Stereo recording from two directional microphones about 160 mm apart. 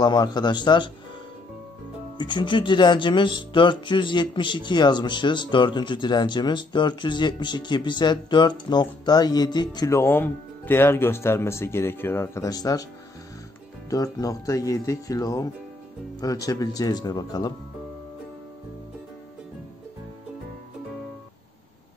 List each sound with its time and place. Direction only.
0.0 s speech: 25° left (ahead or behind)
2.1 s speech: 30° left (ahead or behind)
13.8 s speech: 20° left (ahead or behind)